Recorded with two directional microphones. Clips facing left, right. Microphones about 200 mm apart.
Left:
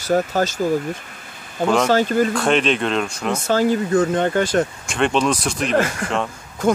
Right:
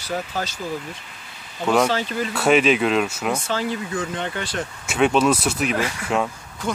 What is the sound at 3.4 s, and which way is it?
Speech, 45° left (ahead or behind).